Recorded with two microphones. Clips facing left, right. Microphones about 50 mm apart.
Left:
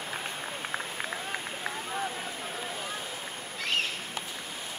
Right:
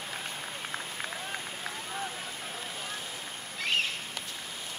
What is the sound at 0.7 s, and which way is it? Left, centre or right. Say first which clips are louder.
Run: left 3 dB; centre.